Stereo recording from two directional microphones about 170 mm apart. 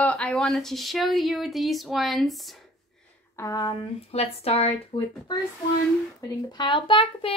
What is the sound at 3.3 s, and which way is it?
Speech, 20° left (ahead or behind).